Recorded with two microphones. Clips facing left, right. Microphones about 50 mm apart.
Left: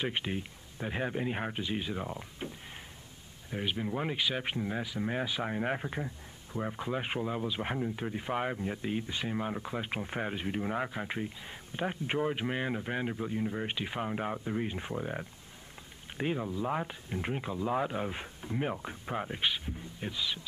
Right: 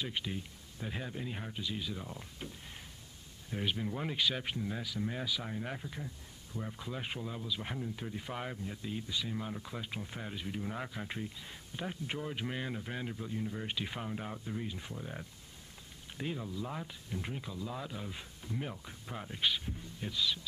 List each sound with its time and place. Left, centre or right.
0.0 s speech: left